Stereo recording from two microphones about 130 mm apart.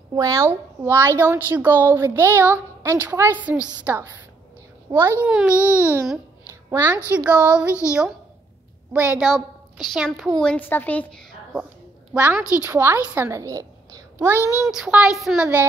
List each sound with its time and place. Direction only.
0.1 s a woman's voice: 25° right (ahead or behind)
4.9 s a child's voice: 40° right (ahead or behind)
5.2 s a woman's voice: 10° right (ahead or behind)
7.1 s a woman's voice: 10° right (ahead or behind)
8.9 s a woman's voice: 10° right (ahead or behind)
10.4 s a woman's voice: 10° left (ahead or behind)
12.1 s a woman's voice: 15° right (ahead or behind)
14.4 s a child's voice: 25° left (ahead or behind)
14.7 s speech: 5° right (ahead or behind)